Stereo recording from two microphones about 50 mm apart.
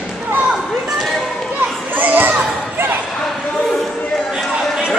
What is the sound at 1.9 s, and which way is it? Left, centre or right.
Children playing, right.